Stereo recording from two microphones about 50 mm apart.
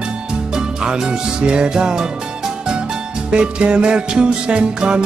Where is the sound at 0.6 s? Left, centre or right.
Centre.